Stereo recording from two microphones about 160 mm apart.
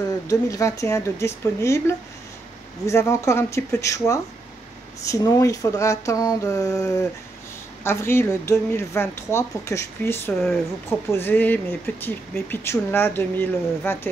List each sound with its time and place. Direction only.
0.3 s speech: 20° left (ahead or behind)